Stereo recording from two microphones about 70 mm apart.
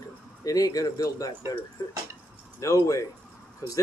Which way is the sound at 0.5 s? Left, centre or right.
Left.